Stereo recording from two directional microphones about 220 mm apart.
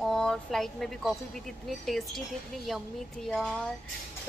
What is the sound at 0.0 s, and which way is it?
Speech, 5° left (ahead or behind).